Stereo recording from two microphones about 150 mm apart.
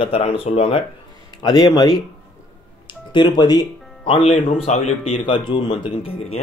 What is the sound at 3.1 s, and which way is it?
Speech, 30° left (ahead or behind).